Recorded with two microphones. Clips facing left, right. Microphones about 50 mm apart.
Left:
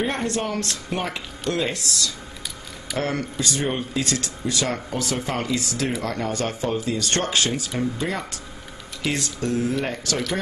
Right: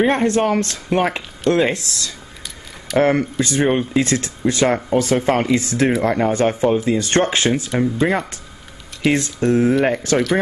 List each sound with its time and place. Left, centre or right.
0.0 s speech: right